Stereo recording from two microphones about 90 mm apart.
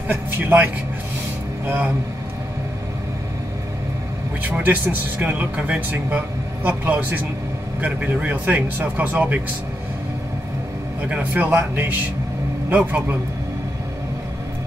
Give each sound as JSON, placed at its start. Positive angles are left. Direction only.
{"t": 0.1, "sound": "speech", "side_deg": -20}
{"t": 4.4, "sound": "speech", "side_deg": -20}
{"t": 11.0, "sound": "speech", "side_deg": -20}